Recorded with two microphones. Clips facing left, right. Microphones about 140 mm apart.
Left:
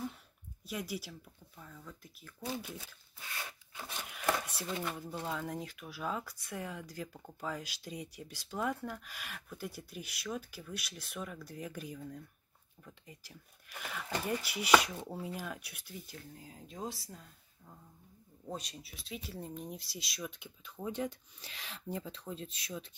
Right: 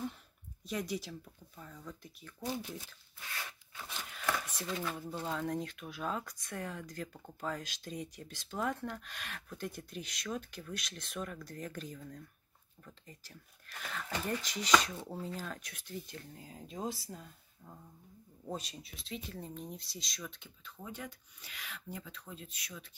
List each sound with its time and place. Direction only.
0.7 s speech: 5° left (ahead or behind)
4.3 s a sound: 10° left (ahead or behind)
5.2 s speech: centre (ahead or behind)
18.5 s speech: centre (ahead or behind); by 22.8 s 25° left (ahead or behind)